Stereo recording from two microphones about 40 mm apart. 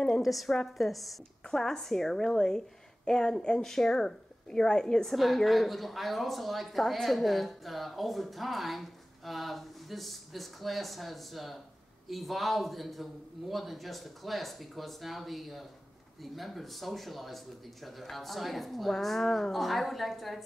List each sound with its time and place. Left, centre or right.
0.2 s speech: centre
1.4 s a woman's voice: centre
5.1 s speech: centre